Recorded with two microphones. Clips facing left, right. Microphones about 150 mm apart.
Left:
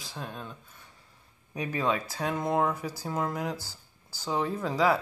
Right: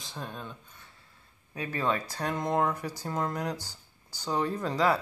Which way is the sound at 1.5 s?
15° left (ahead or behind).